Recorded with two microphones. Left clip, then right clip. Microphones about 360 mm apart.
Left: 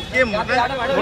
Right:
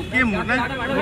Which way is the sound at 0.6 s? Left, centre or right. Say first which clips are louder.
Left 5 dB; left.